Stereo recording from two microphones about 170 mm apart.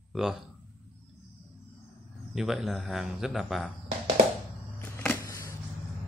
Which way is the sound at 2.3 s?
Centre (ahead or behind).